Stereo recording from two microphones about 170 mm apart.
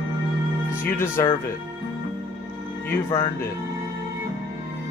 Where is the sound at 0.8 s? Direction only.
15° left (ahead or behind).